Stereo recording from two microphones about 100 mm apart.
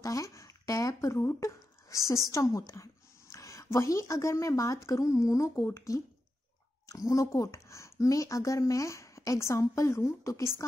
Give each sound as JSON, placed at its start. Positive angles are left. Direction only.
{"t": 0.0, "sound": "a sound", "side_deg": 35}
{"t": 2.3, "sound": "speech", "side_deg": 30}
{"t": 7.1, "sound": "speech", "side_deg": 35}